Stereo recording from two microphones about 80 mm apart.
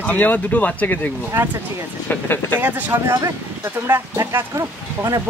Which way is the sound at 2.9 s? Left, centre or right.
Right.